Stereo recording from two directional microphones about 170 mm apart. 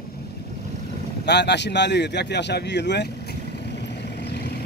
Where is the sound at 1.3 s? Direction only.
90° left.